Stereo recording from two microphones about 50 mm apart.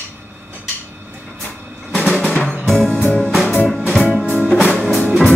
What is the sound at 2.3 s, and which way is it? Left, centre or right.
Music, centre.